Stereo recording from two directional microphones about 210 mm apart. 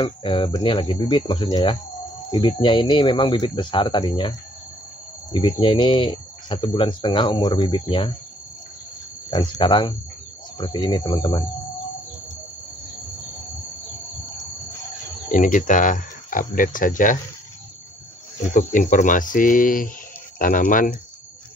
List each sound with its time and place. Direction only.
0.0 s speech: 25° left (ahead or behind)
5.3 s speech: 25° left (ahead or behind)
9.3 s speech: 20° left (ahead or behind)
15.3 s speech: 35° left (ahead or behind)
18.5 s speech: 40° left (ahead or behind)